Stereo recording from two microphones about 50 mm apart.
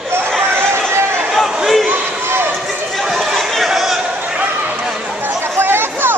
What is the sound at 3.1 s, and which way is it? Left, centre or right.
Chatter, centre.